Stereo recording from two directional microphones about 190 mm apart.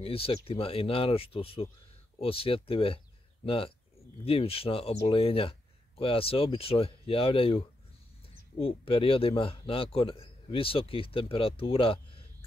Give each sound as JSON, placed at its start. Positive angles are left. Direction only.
{"t": 0.0, "sound": "a man's voice", "side_deg": 30}